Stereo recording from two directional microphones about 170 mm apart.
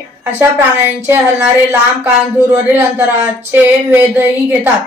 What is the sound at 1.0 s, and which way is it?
Speech, 10° right (ahead or behind).